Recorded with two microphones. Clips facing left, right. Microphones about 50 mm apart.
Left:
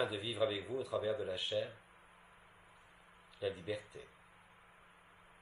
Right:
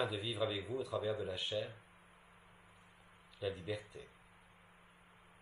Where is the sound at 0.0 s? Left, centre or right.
Left.